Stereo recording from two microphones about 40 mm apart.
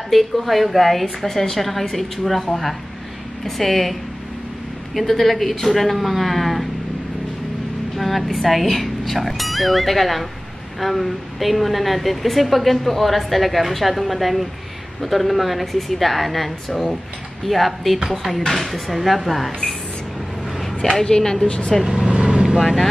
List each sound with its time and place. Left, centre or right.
0.1 s a woman's voice: centre
4.9 s a woman's voice: centre
8.0 s a woman's voice: centre
21.0 s speech: centre
21.8 s speech: centre
22.3 s vehicle: right